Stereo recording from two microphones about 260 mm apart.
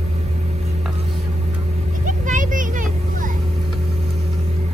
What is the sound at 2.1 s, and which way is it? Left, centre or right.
Vehicle, right.